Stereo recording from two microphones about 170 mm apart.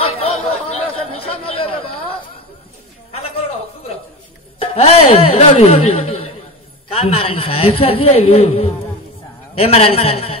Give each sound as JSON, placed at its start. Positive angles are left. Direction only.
{"t": 0.0, "sound": "chatter", "side_deg": 35}
{"t": 3.1, "sound": "a sound", "side_deg": 35}
{"t": 4.6, "sound": "a woman's voice", "side_deg": 35}